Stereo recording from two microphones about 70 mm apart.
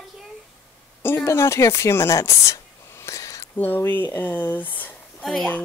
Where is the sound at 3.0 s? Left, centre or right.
Left.